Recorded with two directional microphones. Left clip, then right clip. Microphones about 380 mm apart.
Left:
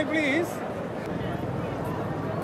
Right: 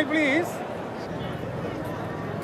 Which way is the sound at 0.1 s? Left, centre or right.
Right.